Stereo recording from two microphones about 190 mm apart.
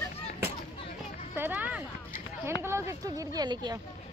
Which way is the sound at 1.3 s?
10° right (ahead or behind).